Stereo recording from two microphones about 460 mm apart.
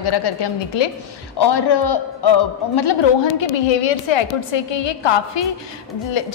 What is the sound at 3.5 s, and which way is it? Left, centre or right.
A woman's voice, left.